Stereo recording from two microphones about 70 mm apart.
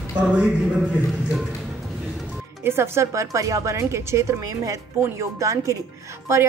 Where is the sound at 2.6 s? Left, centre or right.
Right.